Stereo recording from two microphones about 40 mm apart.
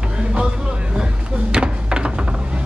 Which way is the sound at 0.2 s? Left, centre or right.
Right.